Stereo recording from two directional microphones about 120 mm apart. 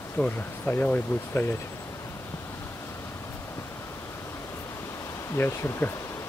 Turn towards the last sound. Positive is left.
turn(degrees=20)  # may be behind; listen again after turning